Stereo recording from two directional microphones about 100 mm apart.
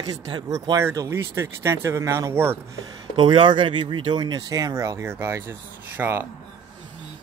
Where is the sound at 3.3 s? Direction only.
55° right (ahead or behind); by 6.3 s 20° right (ahead or behind).